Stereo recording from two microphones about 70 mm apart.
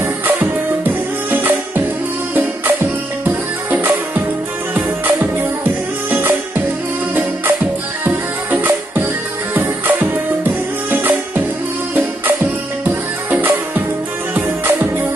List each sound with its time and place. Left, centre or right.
0.0 s music: right
3.3 s music: right
8.0 s music: right
12.8 s music: right